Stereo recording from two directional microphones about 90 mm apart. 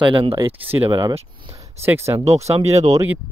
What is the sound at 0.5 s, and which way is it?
Speech, 20° right (ahead or behind).